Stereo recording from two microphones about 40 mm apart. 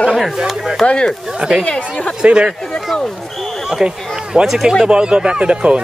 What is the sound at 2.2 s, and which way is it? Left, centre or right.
Speech, right.